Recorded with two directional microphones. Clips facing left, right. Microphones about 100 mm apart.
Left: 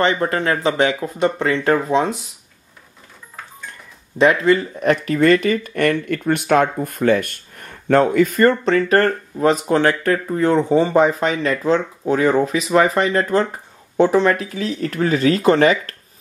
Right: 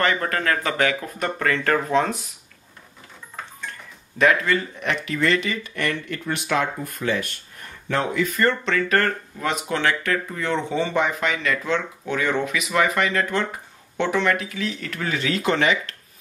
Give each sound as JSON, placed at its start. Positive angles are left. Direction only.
{"t": 0.0, "sound": "speech", "side_deg": 25}
{"t": 4.2, "sound": "speech", "side_deg": 30}
{"t": 4.7, "sound": "speech", "side_deg": 40}